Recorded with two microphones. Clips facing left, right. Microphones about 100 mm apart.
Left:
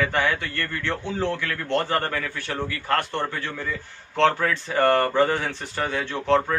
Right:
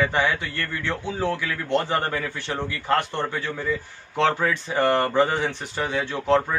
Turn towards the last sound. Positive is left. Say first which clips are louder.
# even
turn(degrees=-10)  # may be behind; listen again after turning